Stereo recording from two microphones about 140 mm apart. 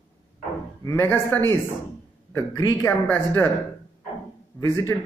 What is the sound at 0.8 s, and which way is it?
Speech, 15° left (ahead or behind).